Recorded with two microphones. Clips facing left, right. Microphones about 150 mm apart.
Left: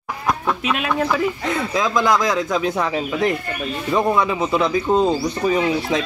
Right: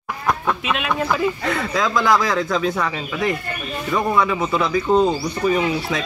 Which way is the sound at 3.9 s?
20° left (ahead or behind).